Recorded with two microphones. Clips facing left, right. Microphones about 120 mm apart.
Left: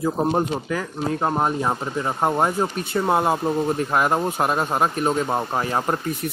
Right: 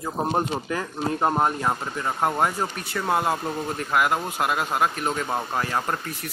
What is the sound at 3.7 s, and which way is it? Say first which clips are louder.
Speech: left 3 dB; 30° left (ahead or behind).